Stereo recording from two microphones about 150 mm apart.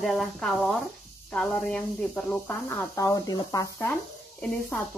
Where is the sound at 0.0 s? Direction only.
Centre (ahead or behind).